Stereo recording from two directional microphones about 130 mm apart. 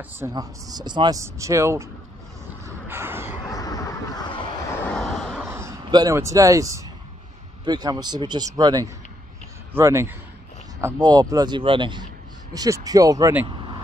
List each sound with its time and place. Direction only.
0.2 s a man's voice: 30° right (ahead or behind)
1.2 s speech: 20° right (ahead or behind)
2.6 s vehicle: 20° right (ahead or behind)
3.4 s a sound: 25° left (ahead or behind)
4.8 s vehicle: 5° left (ahead or behind)
5.5 s a sound: 20° right (ahead or behind)
5.9 s a man's voice: 30° right (ahead or behind)
9.8 s a man's voice: 20° right (ahead or behind); by 12.1 s 40° right (ahead or behind)
12.5 s speech: 25° right (ahead or behind)